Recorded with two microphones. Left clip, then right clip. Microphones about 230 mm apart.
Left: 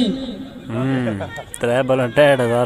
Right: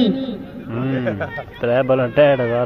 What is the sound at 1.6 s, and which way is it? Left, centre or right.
Speech, centre.